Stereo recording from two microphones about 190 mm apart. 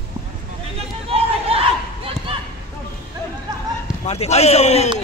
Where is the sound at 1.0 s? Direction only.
30° right (ahead or behind).